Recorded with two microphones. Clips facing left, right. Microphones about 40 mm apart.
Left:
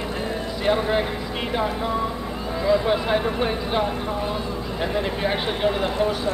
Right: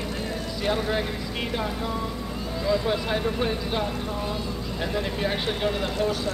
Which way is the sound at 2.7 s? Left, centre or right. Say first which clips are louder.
Left 5 dB; left.